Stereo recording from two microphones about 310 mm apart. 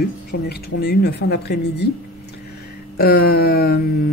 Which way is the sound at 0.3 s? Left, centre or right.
Left.